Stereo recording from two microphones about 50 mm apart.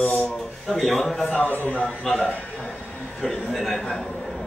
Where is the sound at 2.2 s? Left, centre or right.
Left.